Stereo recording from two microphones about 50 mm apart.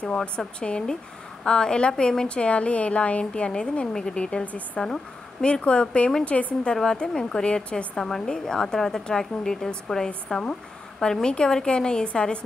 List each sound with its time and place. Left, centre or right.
0.0 s a woman's voice: left
4.8 s a woman's voice: centre
6.7 s a woman's voice: centre